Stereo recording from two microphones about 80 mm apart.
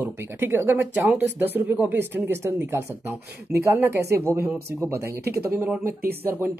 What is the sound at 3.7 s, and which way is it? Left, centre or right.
Speech, right.